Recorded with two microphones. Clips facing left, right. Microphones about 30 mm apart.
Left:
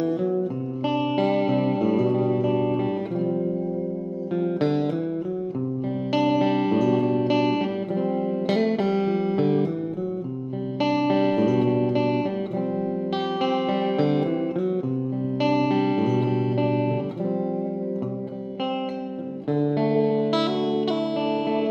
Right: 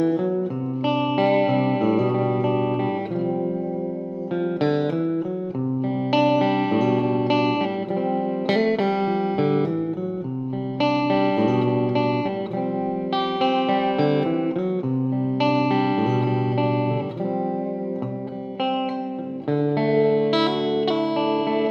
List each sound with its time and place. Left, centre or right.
0.8 s music: right
4.6 s music: centre
6.1 s music: right
10.8 s music: centre
15.3 s music: centre
19.5 s music: right